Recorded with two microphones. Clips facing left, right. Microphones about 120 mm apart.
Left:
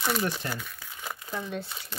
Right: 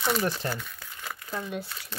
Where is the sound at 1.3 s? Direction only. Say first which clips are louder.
Right 1 dB; 5° right (ahead or behind).